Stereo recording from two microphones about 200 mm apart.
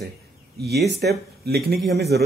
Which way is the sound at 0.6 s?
55° right (ahead or behind).